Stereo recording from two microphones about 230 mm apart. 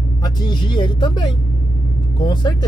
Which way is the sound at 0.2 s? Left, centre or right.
Centre.